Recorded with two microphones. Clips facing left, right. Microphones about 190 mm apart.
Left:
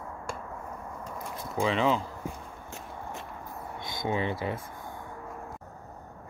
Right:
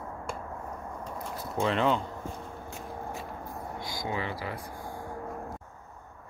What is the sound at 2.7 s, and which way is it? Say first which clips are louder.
Biting: right 1 dB; centre (ahead or behind).